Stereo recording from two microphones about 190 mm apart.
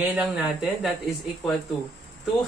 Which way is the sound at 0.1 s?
5° right (ahead or behind).